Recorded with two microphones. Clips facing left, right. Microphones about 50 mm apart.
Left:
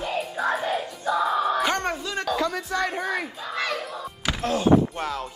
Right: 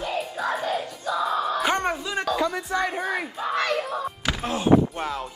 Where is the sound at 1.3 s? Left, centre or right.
Centre.